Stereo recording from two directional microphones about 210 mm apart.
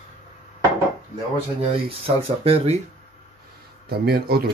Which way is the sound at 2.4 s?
30° right (ahead or behind).